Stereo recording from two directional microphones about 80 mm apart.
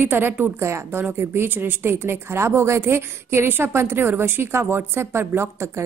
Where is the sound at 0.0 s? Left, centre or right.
Right.